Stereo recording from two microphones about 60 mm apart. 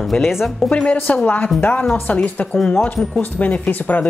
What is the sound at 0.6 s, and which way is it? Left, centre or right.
A woman's voice, centre.